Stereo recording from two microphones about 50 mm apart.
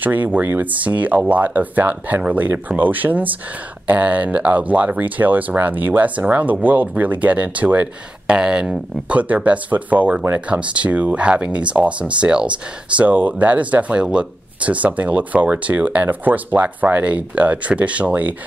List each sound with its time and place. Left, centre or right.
0.0 s speech: right
8.4 s speech: centre